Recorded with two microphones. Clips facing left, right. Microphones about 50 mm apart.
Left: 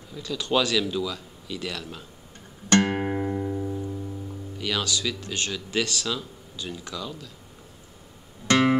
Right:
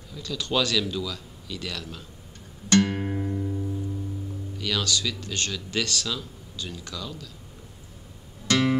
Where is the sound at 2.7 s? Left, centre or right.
Centre.